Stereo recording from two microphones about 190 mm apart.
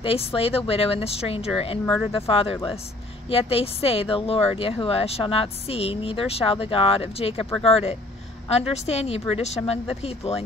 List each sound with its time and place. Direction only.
0.0 s speech: 30° left (ahead or behind)